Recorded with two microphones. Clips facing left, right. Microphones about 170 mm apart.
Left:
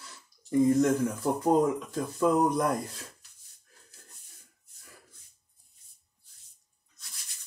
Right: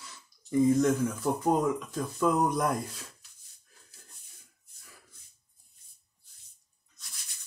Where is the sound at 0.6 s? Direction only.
50° left (ahead or behind).